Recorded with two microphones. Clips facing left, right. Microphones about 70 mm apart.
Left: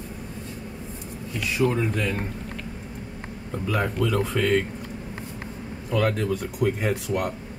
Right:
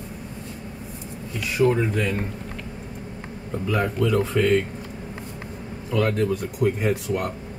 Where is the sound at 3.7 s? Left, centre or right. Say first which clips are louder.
Right 2 dB; centre.